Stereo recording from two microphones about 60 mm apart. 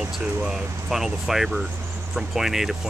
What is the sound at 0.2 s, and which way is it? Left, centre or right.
Speech, centre.